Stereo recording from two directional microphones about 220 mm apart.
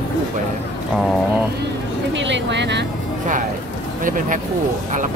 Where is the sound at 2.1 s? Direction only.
55° right (ahead or behind).